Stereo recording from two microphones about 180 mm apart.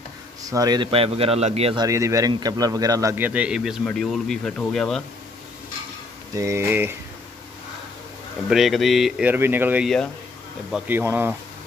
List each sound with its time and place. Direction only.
0.4 s speech: 20° right (ahead or behind)
1.9 s a man's voice: 15° right (ahead or behind); by 5.0 s 5° left (ahead or behind)
6.3 s a man's voice: 15° right (ahead or behind)
8.5 s a man's voice: centre (ahead or behind)